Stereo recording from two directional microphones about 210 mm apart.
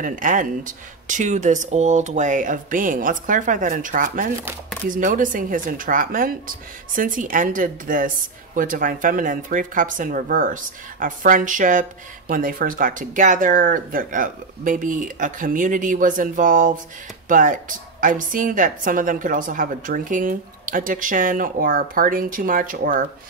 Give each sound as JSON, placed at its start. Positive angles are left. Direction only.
{"t": 0.0, "sound": "a woman's voice", "side_deg": -40}